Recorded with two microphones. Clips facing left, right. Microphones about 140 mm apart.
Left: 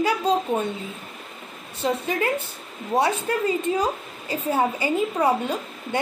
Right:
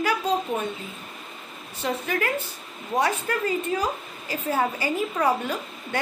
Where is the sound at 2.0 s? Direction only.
25° left (ahead or behind).